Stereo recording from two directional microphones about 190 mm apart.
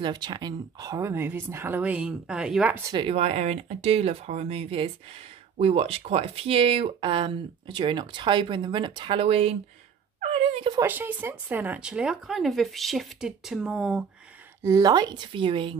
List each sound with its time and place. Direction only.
0.0 s speech: 25° right (ahead or behind); by 2.8 s 5° right (ahead or behind)
2.9 s speech: 30° right (ahead or behind)
10.5 s a sound: 30° right (ahead or behind)
10.8 s speech: 10° right (ahead or behind)
14.6 s speech: 20° right (ahead or behind)